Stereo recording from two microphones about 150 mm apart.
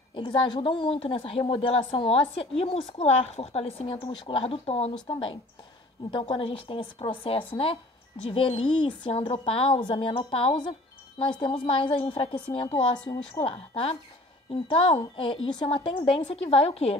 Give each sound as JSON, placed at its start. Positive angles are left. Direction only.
{"t": 0.1, "sound": "a woman's voice", "side_deg": 30}
{"t": 5.0, "sound": "a woman's voice", "side_deg": 30}